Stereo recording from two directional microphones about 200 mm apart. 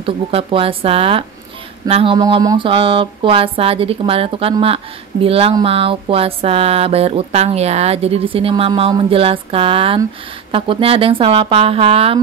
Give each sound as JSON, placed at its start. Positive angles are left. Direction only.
{"t": 0.0, "sound": "speech", "side_deg": -30}